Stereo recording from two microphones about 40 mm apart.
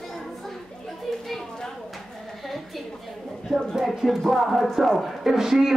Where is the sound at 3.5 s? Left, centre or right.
Centre.